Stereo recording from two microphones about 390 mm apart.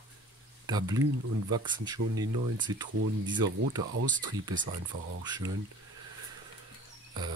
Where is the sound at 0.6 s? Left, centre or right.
Centre.